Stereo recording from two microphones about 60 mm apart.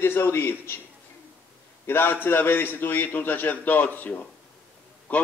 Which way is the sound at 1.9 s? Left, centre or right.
Left.